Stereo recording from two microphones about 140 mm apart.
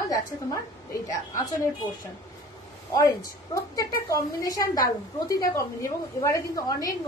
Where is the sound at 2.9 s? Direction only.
25° left (ahead or behind).